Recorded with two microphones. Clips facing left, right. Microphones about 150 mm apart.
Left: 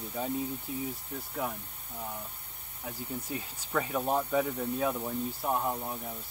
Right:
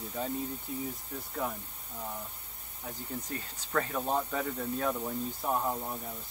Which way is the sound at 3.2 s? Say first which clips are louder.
Left 2 dB; 10° left (ahead or behind).